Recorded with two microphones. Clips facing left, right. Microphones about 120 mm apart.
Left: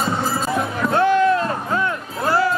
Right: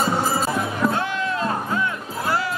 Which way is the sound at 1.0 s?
50° left (ahead or behind).